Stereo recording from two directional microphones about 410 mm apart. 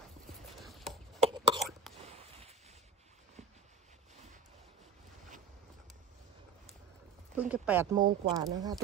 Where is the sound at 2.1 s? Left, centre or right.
Centre.